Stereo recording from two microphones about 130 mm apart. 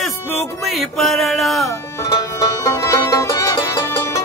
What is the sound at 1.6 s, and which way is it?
Music, 25° left (ahead or behind).